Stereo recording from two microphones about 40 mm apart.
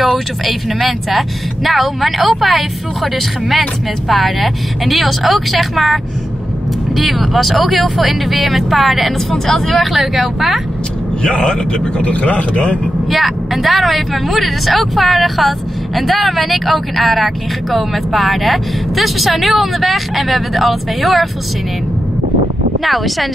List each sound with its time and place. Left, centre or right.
0.5 s speech: centre
7.0 s speech: centre
9.9 s speech: centre
11.2 s speech: left
13.1 s speech: centre
22.8 s speech: centre